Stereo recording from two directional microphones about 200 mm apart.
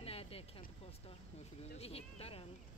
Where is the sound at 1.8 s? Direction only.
30° left (ahead or behind).